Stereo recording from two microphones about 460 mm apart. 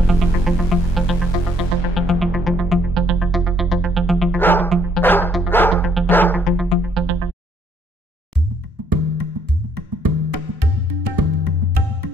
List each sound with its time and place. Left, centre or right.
0.1 s music: centre
8.8 s music: right